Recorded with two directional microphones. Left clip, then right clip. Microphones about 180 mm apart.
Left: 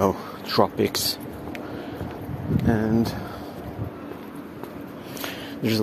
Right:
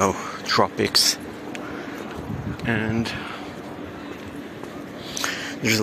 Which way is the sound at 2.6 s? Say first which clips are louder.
Even; 20° left (ahead or behind).